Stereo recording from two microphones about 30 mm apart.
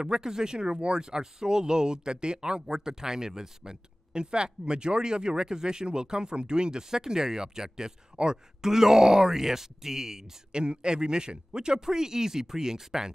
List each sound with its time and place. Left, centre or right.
0.0 s speech: right
4.1 s speech: right
10.5 s speech: right